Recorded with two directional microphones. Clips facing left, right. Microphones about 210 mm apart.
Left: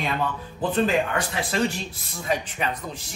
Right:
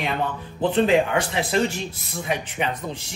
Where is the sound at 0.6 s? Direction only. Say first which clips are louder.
Right 4 dB; 25° right (ahead or behind).